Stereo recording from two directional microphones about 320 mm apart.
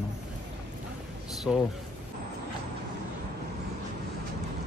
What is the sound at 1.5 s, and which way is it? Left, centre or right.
Speech, centre.